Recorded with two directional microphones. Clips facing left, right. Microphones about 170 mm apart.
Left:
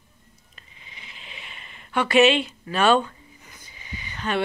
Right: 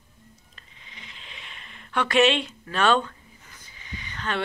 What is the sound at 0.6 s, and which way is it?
Speech, 5° left (ahead or behind).